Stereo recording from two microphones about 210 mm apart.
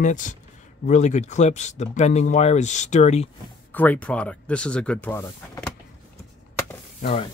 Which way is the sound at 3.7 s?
10° left (ahead or behind).